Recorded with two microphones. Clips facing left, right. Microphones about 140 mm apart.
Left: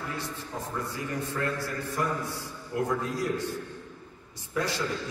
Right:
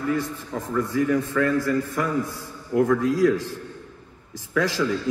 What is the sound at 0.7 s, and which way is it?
A man's voice, 90° right.